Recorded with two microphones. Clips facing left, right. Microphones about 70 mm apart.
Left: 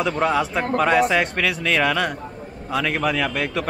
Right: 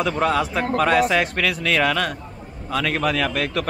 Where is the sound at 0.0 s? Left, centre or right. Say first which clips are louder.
Even; centre.